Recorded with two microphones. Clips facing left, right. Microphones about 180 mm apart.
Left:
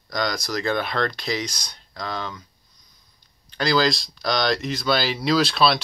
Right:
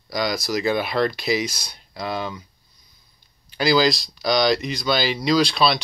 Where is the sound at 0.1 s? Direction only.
5° right (ahead or behind).